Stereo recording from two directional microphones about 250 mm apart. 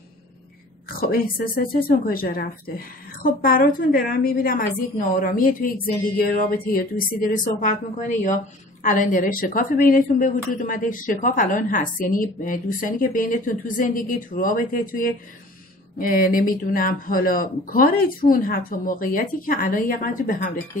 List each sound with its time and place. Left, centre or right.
0.8 s a woman's voice: left
8.8 s a woman's voice: left